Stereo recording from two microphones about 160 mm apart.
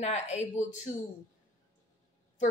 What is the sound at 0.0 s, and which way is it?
Speech, 45° left (ahead or behind).